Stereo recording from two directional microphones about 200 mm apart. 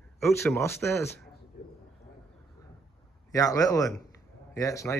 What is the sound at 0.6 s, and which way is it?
Speech, 15° left (ahead or behind).